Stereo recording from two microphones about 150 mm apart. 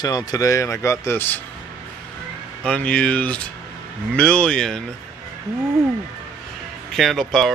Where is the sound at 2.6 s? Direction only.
10° left (ahead or behind).